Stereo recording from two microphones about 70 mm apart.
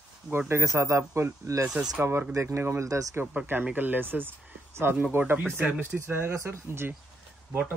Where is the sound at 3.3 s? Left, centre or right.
Right.